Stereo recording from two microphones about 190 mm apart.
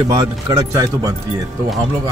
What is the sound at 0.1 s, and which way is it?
Speech, 20° right (ahead or behind).